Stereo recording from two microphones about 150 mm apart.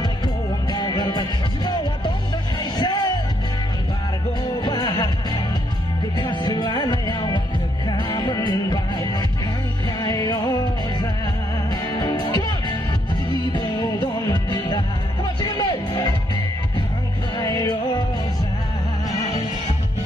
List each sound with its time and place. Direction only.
0.7 s music: 25° left (ahead or behind)
4.6 s music: 30° left (ahead or behind)
17.4 s music: 25° left (ahead or behind)